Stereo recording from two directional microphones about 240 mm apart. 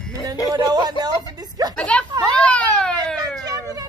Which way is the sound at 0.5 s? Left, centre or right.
Centre.